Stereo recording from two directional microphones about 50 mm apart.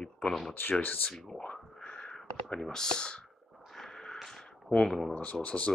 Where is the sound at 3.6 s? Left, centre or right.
Centre.